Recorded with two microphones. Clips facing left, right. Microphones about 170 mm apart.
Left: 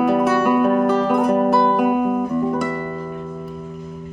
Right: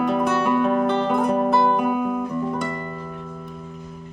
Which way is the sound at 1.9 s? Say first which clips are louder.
Left 4 dB; 50° left (ahead or behind).